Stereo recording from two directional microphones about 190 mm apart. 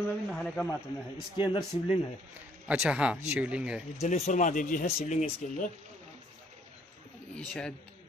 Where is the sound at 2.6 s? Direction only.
5° right (ahead or behind).